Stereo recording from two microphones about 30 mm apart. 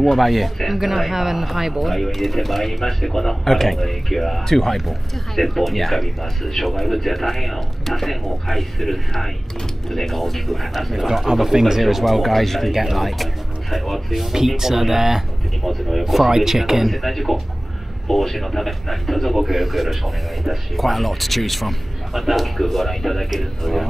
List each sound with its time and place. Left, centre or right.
0.0 s speech: centre
4.7 s speech: centre
11.8 s speech: centre
15.6 s speech: centre
16.3 s speech: centre
16.8 s speech: centre